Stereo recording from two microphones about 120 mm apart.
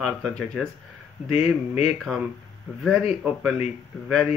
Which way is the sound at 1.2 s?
60° left (ahead or behind).